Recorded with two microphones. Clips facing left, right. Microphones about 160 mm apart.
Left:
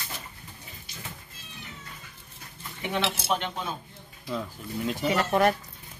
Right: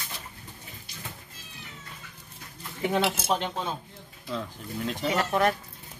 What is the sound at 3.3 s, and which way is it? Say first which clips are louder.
Speech: right 1 dB; 35° right (ahead or behind).